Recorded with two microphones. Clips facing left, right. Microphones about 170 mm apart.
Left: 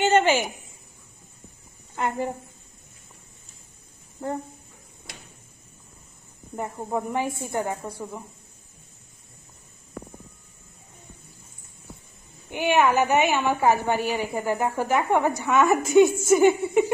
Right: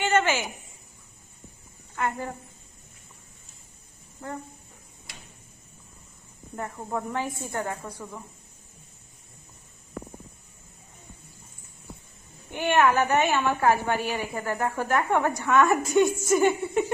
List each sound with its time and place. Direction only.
0.0 s a woman's voice: 25° left (ahead or behind)
2.0 s a woman's voice: 20° left (ahead or behind)
6.5 s a woman's voice: 15° left (ahead or behind)
12.4 s a woman's voice: 5° left (ahead or behind)